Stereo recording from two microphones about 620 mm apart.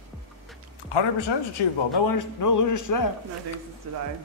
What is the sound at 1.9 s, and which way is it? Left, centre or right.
Speech, left.